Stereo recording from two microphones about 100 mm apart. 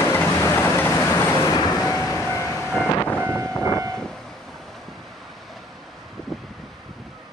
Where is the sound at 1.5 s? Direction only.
40° left (ahead or behind).